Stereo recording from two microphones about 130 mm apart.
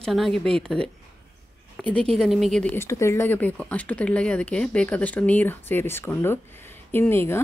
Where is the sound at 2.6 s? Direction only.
15° left (ahead or behind).